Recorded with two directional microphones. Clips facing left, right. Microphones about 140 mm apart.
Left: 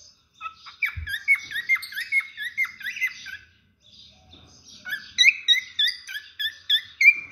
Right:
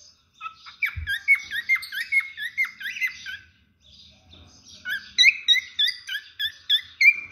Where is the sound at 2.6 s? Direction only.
40° left (ahead or behind).